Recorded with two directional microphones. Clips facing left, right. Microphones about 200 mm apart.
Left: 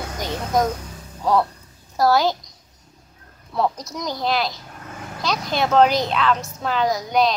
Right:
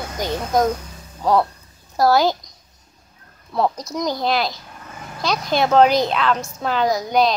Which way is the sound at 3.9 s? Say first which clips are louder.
Right 3 dB; centre (ahead or behind).